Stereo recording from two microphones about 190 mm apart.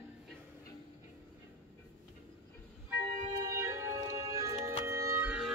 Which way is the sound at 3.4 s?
15° right (ahead or behind).